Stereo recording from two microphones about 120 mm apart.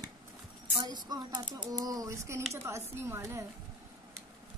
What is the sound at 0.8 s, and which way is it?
A woman's voice, 35° right (ahead or behind).